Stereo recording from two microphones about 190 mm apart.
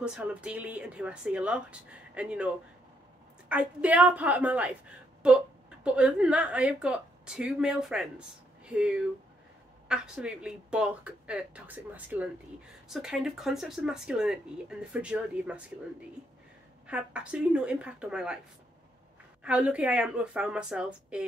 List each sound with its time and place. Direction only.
0.0 s speech: 5° right (ahead or behind)
5.9 s speech: 5° right (ahead or behind)
16.8 s speech: 5° right (ahead or behind)
19.4 s speech: 5° right (ahead or behind)